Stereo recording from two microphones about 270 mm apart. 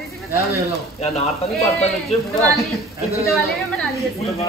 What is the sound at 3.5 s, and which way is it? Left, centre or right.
Speech, centre.